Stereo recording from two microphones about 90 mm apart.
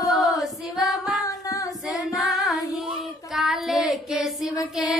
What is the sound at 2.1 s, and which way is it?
Child singing, centre (ahead or behind).